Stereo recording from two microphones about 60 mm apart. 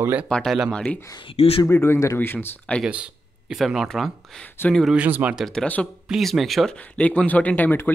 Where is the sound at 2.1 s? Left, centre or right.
Left.